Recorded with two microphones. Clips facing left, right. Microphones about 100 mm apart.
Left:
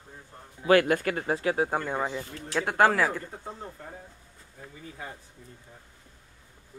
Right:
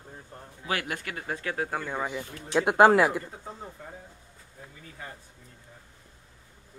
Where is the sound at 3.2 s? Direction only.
Centre (ahead or behind).